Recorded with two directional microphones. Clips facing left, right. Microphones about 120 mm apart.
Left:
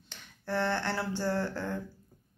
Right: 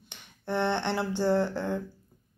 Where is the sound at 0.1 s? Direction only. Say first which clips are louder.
Right 2 dB; 20° right (ahead or behind).